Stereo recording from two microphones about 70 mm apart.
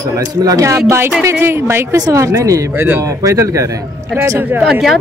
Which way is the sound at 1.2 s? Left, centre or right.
Right.